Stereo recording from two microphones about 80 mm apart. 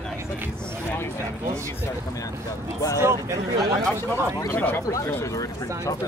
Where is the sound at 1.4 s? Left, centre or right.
Right.